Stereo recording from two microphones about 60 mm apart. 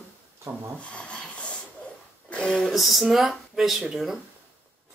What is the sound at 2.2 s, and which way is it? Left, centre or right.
Speech, centre.